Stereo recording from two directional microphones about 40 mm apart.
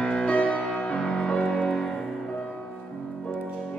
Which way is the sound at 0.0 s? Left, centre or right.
Left.